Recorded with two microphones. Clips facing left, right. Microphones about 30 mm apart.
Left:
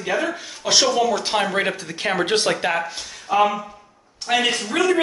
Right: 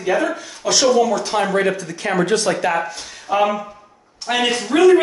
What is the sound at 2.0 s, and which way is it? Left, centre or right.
Speech, left.